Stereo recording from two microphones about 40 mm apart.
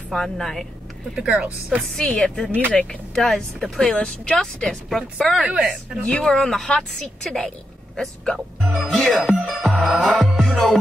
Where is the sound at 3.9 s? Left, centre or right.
Left.